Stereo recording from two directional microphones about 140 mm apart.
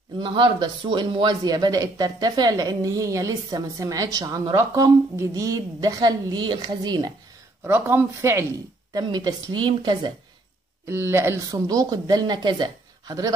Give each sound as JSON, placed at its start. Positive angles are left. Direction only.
{"t": 0.2, "sound": "speech", "side_deg": -35}
{"t": 7.6, "sound": "speech", "side_deg": -15}
{"t": 8.9, "sound": "a woman's voice", "side_deg": -30}
{"t": 10.9, "sound": "speech", "side_deg": -20}